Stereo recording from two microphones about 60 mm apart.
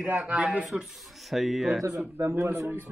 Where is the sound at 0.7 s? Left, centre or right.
Centre.